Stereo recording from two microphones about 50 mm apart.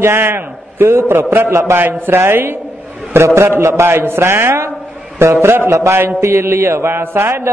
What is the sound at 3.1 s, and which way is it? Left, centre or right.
A man's voice, right.